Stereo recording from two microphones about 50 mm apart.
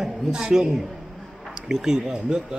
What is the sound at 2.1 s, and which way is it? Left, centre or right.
Speech, centre.